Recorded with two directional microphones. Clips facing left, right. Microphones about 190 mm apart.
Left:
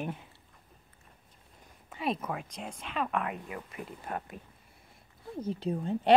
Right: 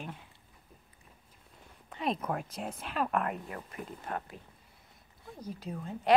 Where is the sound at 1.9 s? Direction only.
5° left (ahead or behind).